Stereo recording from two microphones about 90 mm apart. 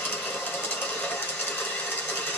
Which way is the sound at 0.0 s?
15° left (ahead or behind).